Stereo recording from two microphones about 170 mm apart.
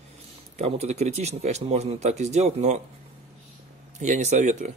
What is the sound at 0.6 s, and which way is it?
Speech, 40° right (ahead or behind).